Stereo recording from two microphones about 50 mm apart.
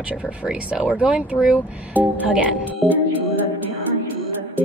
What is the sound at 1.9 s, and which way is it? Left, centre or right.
Speech, right.